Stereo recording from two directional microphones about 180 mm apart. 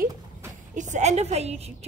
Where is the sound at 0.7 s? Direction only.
45° right (ahead or behind).